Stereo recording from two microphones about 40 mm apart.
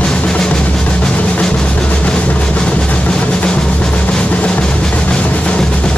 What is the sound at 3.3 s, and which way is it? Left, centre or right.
Drum, left.